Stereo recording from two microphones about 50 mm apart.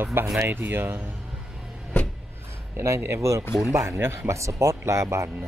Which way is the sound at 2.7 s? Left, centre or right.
Right.